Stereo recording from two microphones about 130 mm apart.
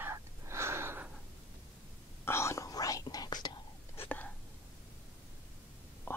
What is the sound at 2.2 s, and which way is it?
Whispering, 20° left (ahead or behind).